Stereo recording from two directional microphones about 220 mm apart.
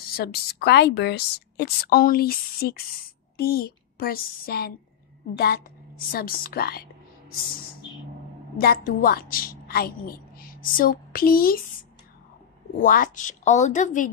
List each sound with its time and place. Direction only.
0.1 s a woman's voice: 45° left (ahead or behind)
12.8 s a woman's voice: 40° left (ahead or behind)